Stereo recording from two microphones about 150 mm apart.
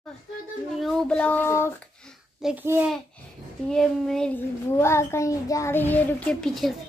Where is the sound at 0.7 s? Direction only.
Centre (ahead or behind).